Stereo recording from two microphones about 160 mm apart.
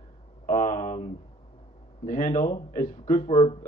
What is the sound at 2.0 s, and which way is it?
Speech, 50° left (ahead or behind).